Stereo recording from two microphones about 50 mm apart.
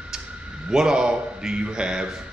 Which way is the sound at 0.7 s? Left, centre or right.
Centre.